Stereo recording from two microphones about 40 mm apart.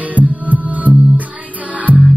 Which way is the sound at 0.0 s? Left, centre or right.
Right.